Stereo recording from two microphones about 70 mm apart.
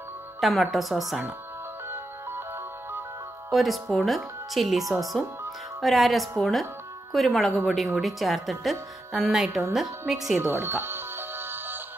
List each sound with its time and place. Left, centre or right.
0.4 s a woman's voice: centre
3.5 s a woman's voice: centre
10.4 s music: right